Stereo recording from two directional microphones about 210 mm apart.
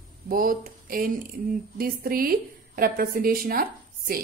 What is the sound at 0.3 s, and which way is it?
Speech, 45° right (ahead or behind).